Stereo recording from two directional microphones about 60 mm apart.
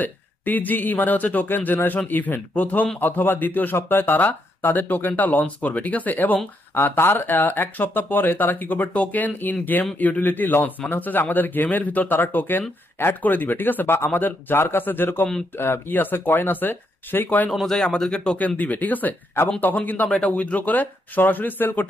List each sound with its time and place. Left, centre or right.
0.0 s speech: left
17.5 s speech: centre
18.6 s speech: left